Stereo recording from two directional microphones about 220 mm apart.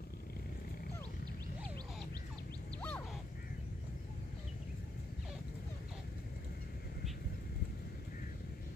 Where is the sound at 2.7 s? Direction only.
5° left (ahead or behind).